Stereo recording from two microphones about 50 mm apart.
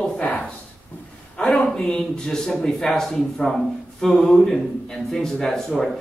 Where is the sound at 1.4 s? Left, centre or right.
Centre.